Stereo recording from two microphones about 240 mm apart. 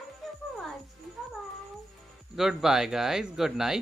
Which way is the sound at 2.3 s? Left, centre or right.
Centre.